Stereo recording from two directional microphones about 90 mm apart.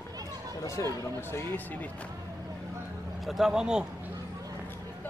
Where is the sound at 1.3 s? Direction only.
20° left (ahead or behind).